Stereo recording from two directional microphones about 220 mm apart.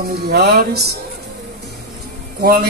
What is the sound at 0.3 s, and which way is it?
Speech, 45° right (ahead or behind).